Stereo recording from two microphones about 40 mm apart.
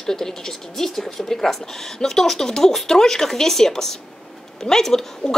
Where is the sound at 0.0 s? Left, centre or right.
Centre.